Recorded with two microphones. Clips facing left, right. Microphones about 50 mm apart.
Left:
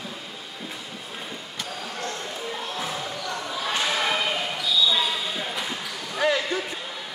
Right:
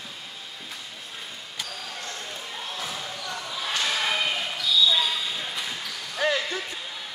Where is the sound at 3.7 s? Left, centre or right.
Centre.